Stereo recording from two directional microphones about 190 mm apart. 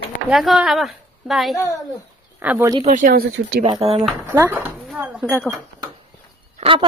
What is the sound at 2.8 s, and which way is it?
Speech, 50° right (ahead or behind).